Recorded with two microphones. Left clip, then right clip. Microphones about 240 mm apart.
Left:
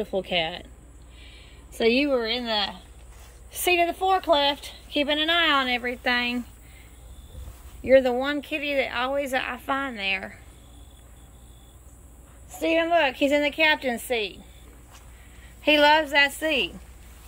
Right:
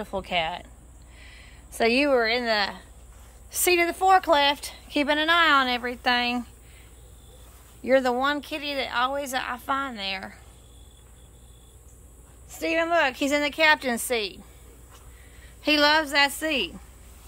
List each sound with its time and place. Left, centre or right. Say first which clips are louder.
0.0 s speech: left 1 dB; right
1.9 s a woman's voice: right 1 dB; centre
7.8 s speech: left 2 dB; centre
12.5 s a woman's voice: left 1 dB; centre
15.6 s a woman's voice: left 2 dB; centre